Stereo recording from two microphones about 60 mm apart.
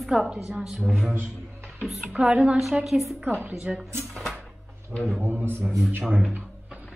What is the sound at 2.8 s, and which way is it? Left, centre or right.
Speech, centre.